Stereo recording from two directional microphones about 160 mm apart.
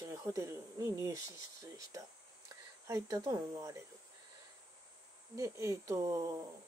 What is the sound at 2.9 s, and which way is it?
Speech, 20° right (ahead or behind).